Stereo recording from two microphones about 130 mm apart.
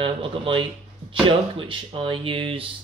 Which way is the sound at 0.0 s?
45° right (ahead or behind).